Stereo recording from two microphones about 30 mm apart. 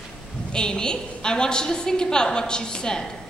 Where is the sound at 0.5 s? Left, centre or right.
Left.